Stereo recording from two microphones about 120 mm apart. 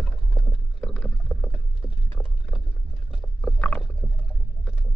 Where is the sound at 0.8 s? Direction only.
5° left (ahead or behind).